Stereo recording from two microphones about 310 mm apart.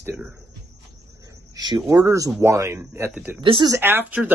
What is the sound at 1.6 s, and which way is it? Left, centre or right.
Speech, centre.